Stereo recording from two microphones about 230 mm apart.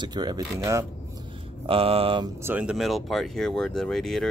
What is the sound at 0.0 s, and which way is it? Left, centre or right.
Speech, centre.